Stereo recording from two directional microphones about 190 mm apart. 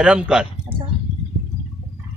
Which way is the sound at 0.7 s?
10° right (ahead or behind).